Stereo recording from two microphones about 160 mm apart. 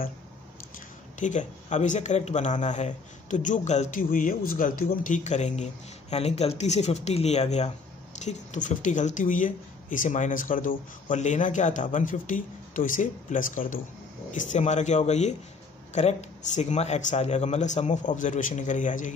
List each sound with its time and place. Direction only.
1.2 s speech: 50° left (ahead or behind)